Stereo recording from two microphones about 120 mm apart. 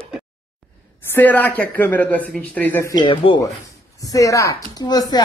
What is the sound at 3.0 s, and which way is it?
Speech, 45° left (ahead or behind).